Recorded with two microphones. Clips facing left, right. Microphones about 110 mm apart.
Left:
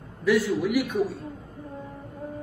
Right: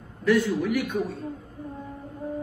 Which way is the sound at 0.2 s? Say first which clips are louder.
Even; 5° left (ahead or behind).